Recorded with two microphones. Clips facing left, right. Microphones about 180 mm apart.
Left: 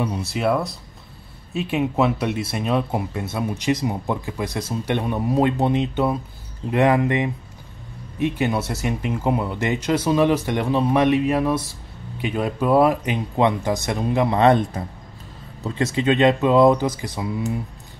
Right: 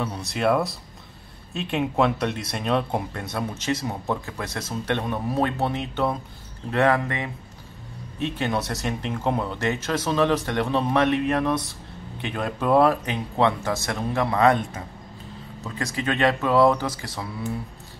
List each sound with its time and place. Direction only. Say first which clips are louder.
0.0 s speech: left 2 dB; 10° left (ahead or behind); by 14.6 s 25° left (ahead or behind)
15.6 s speech: left 7 dB; 25° left (ahead or behind)